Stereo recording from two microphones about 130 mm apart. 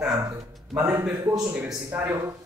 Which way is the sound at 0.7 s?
15° right (ahead or behind).